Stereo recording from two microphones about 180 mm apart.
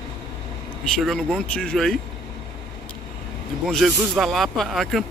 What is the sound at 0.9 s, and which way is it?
Speech, centre (ahead or behind).